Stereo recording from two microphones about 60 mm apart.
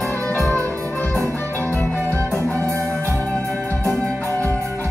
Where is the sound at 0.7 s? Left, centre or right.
Left.